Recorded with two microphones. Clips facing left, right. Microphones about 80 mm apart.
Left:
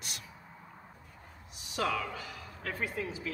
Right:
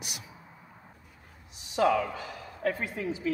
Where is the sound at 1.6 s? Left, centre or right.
Right.